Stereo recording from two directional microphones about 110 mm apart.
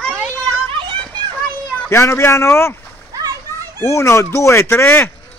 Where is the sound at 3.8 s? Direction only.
25° left (ahead or behind).